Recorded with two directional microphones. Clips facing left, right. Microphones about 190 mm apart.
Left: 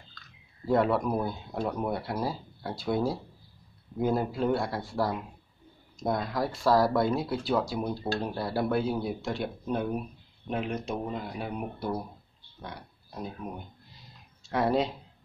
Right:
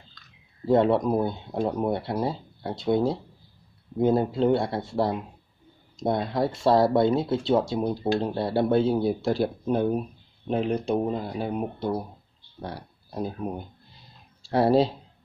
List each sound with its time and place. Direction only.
0.7 s speech: 20° right (ahead or behind)